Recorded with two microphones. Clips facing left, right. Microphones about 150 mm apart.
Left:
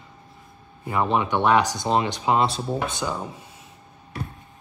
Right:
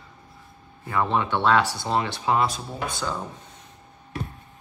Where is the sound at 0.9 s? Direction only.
15° left (ahead or behind).